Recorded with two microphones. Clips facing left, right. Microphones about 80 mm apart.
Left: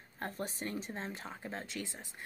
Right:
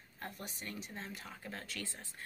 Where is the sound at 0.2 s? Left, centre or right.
Left.